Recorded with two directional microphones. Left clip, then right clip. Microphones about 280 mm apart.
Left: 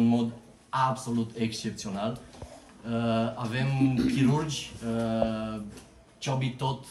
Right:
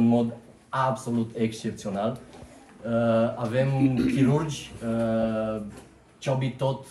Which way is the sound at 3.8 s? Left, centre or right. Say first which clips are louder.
Right 2 dB; left.